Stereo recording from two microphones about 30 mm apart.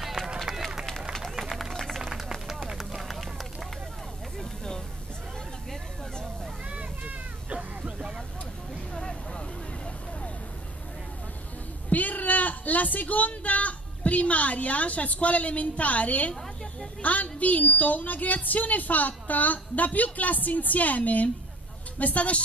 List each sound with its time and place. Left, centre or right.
1.7 s run: centre
2.0 s run: centre
4.4 s vehicle: left
11.9 s a sound: left
13.3 s a woman's voice: left